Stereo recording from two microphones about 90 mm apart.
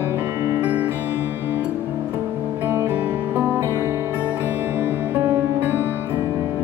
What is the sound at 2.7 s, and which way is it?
Music, 25° right (ahead or behind).